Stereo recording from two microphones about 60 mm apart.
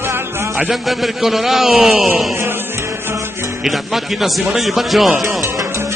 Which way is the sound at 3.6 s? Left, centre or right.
Centre.